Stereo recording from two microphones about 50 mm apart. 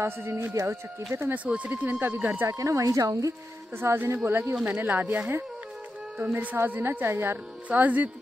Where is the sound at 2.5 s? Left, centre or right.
Right.